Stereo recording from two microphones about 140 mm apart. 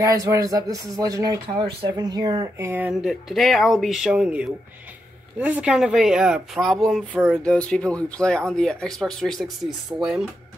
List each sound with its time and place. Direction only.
0.0 s speech: 25° right (ahead or behind)
2.6 s speech: 10° right (ahead or behind)